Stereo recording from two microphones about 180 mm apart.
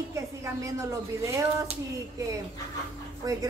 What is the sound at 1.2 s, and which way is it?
Speech, 15° right (ahead or behind).